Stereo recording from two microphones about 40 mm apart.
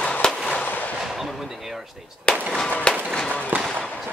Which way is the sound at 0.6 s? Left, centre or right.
Left.